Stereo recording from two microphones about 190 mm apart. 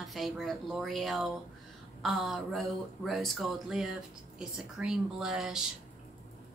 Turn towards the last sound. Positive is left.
turn(degrees=0)  # may be behind; listen again after turning